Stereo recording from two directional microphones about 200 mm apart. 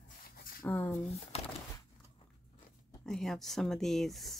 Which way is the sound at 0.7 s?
10° left (ahead or behind).